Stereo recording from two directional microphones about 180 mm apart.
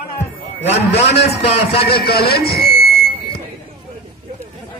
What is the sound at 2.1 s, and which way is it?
Speech, 60° left (ahead or behind).